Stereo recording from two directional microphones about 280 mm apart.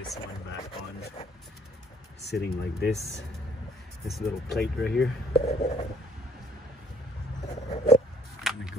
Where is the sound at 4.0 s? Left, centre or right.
Centre.